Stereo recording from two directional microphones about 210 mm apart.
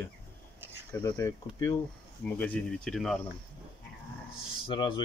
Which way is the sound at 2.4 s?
5° left (ahead or behind).